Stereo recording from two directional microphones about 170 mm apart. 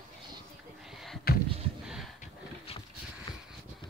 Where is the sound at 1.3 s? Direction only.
65° left (ahead or behind).